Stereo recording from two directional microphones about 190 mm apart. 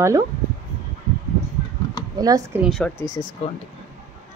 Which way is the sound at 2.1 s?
20° right (ahead or behind).